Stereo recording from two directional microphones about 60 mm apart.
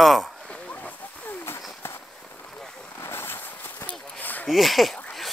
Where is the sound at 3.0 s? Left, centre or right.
Left.